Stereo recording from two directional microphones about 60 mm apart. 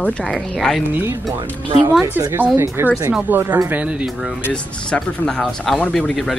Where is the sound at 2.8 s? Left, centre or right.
Right.